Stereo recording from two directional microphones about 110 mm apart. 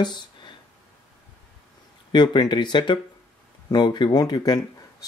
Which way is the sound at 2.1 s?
45° left (ahead or behind).